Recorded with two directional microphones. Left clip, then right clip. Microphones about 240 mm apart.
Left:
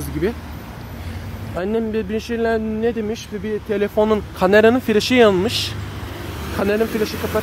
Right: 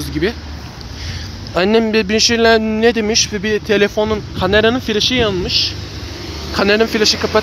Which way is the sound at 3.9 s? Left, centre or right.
Centre.